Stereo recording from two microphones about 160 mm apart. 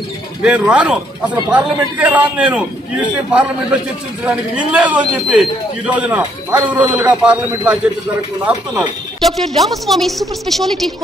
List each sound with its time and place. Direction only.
0.4 s speech: 10° right (ahead or behind)